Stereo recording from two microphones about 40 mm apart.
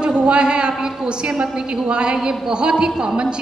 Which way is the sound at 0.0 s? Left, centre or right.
Right.